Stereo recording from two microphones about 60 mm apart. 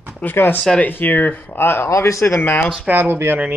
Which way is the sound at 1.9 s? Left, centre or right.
Left.